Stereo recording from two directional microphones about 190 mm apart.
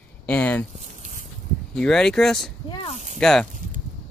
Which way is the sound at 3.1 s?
5° left (ahead or behind).